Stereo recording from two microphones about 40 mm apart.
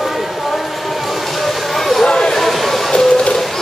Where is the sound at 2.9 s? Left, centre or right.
Centre.